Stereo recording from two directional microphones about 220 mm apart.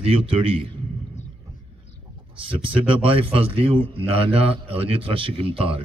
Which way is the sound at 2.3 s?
25° right (ahead or behind).